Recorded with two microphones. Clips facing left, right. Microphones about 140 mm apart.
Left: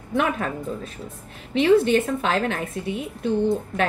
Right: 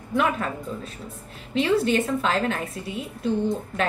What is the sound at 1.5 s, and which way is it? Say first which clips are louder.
Speech: left 4 dB; 50° left (ahead or behind).